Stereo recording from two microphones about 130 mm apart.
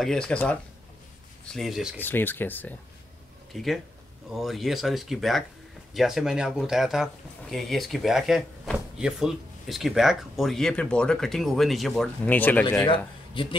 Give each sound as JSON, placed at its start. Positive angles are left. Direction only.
{"t": 0.0, "sound": "speech", "side_deg": 5}
{"t": 2.0, "sound": "speech", "side_deg": 15}
{"t": 3.5, "sound": "speech", "side_deg": 0}
{"t": 12.3, "sound": "speech", "side_deg": 15}
{"t": 12.8, "sound": "speech", "side_deg": 40}